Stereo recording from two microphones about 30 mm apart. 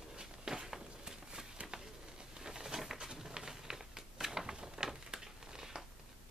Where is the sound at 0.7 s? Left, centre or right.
Centre.